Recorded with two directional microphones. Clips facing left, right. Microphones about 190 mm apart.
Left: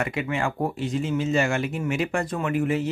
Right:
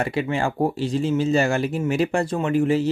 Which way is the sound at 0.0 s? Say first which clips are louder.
Right 3 dB; 30° right (ahead or behind).